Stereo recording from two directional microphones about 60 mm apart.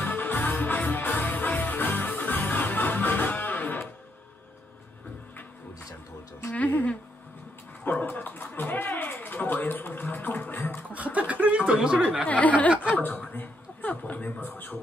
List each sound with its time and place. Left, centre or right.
0.0 s music: left
6.5 s a sound: left
7.8 s dog: left
10.4 s music: left
11.1 s chuckle: right
12.3 s a sound: left